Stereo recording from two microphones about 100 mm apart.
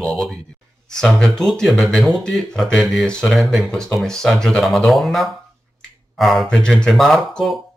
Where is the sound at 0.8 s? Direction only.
5° left (ahead or behind).